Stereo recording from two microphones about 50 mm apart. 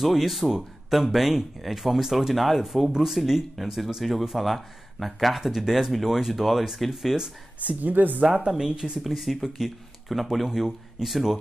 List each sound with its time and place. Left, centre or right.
0.0 s speech: centre
7.6 s speech: right
8.2 s speech: centre
9.0 s speech: centre